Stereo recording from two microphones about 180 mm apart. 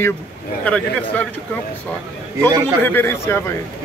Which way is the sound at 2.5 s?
15° right (ahead or behind).